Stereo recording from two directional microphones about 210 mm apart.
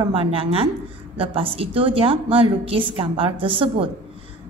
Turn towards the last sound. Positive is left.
turn(degrees=-25)  # may be behind; listen again after turning